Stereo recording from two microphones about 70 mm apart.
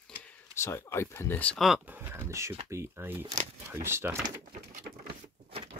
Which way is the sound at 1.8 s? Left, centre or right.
Right.